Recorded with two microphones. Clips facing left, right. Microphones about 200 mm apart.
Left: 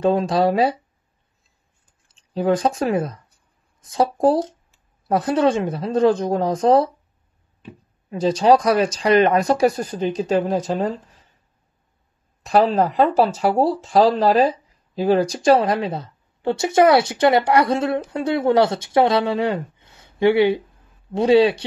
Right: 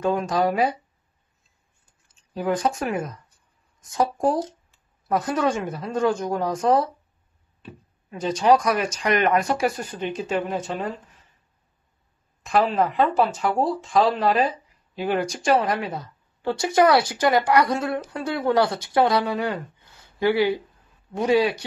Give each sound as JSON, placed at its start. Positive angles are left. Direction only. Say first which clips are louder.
{"t": 0.0, "sound": "speech", "louder": "left 4 dB", "side_deg": 30}
{"t": 2.3, "sound": "speech", "louder": "left 5 dB", "side_deg": 30}
{"t": 8.1, "sound": "speech", "louder": "left 4 dB", "side_deg": 35}
{"t": 12.4, "sound": "speech", "louder": "left 4 dB", "side_deg": 35}